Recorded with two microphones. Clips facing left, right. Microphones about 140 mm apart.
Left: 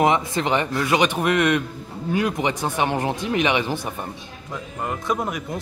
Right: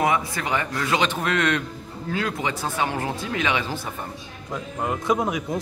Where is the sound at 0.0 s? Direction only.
25° left (ahead or behind).